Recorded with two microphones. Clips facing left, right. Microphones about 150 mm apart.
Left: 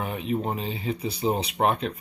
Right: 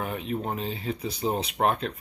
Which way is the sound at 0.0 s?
Centre (ahead or behind).